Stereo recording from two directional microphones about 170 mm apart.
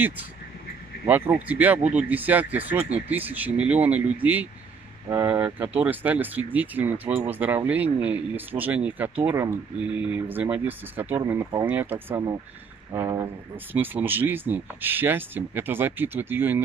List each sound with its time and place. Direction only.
1.0 s speech: 10° right (ahead or behind)